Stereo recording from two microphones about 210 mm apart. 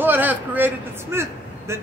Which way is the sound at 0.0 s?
10° right (ahead or behind).